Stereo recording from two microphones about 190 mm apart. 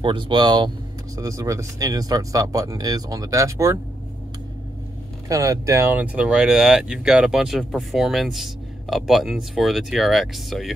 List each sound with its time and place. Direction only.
0.0 s speech: 25° right (ahead or behind)
5.3 s speech: 15° right (ahead or behind); by 10.7 s centre (ahead or behind)